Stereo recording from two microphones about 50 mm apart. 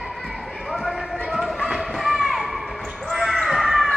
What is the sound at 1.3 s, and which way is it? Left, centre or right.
Basketball bounce, centre.